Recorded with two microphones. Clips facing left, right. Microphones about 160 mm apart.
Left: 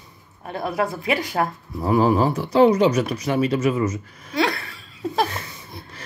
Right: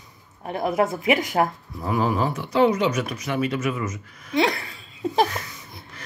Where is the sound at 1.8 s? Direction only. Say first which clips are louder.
Left 5 dB; 35° left (ahead or behind).